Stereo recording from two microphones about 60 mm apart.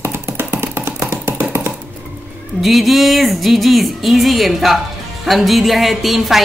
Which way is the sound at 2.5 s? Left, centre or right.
Centre.